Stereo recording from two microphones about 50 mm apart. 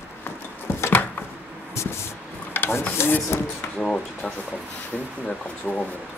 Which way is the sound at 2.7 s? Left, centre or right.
Left.